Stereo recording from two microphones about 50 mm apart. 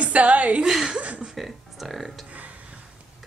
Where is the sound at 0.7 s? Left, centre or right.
Centre.